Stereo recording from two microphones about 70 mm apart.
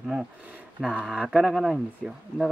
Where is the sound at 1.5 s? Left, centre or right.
Centre.